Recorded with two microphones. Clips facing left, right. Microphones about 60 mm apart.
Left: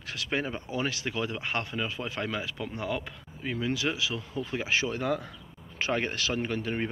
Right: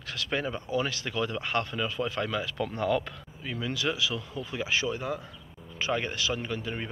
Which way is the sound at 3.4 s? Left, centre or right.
Left.